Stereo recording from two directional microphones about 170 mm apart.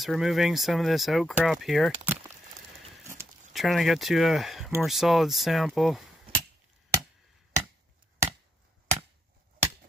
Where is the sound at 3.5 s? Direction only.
Centre (ahead or behind).